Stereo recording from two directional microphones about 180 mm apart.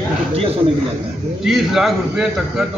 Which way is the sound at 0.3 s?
30° right (ahead or behind).